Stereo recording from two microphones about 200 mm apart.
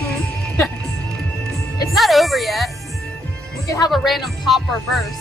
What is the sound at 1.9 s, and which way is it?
Speech, centre (ahead or behind).